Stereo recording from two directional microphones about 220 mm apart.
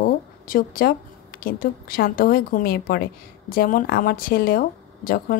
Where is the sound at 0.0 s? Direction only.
40° left (ahead or behind).